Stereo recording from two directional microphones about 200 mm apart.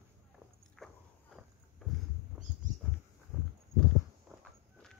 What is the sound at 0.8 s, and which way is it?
Walk, 5° left (ahead or behind).